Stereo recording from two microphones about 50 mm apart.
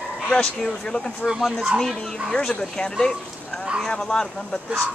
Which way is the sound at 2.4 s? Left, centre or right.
Centre.